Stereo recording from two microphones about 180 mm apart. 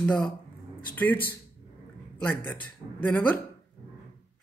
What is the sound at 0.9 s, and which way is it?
Speech, 10° left (ahead or behind).